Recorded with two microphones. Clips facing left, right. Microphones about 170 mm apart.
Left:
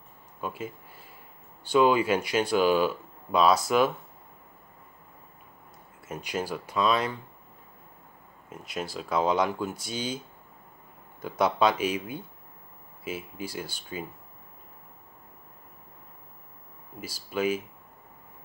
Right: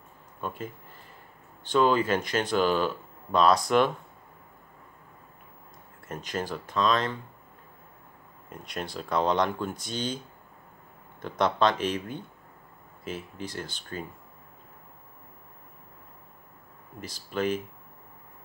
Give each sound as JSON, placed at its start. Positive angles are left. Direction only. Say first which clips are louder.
{"t": 0.4, "sound": "speech", "louder": "left 1 dB", "side_deg": 5}
{"t": 6.0, "sound": "speech", "louder": "left 1 dB", "side_deg": 10}
{"t": 8.5, "sound": "speech", "louder": "left 1 dB", "side_deg": 5}
{"t": 17.0, "sound": "speech", "louder": "left 1 dB", "side_deg": 5}